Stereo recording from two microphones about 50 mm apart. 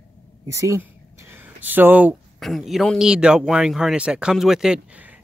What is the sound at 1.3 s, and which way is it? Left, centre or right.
Speech, right.